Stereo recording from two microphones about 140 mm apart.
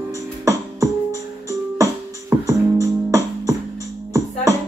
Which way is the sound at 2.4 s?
20° right (ahead or behind).